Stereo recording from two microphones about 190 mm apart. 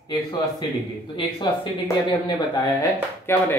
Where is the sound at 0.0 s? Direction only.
20° left (ahead or behind).